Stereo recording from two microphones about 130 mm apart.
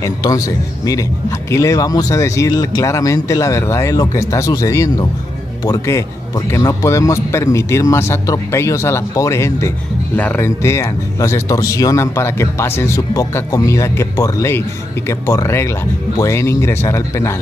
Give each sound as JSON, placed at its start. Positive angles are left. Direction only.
{"t": 0.0, "sound": "speech", "side_deg": 25}
{"t": 1.5, "sound": "speech", "side_deg": 25}